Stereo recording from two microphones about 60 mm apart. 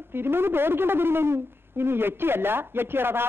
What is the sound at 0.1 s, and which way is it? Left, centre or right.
Speech, right.